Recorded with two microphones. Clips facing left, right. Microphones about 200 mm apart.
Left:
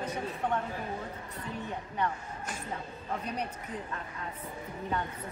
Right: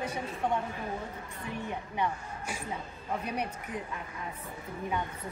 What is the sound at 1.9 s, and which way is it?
A woman's voice, 10° right (ahead or behind).